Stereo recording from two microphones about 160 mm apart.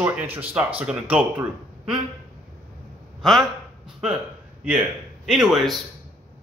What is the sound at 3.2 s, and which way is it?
Speech, centre (ahead or behind).